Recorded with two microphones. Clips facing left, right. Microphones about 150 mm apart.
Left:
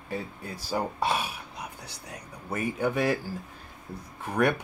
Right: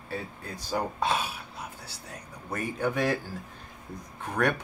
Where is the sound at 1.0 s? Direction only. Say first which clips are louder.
Even; 10° left (ahead or behind).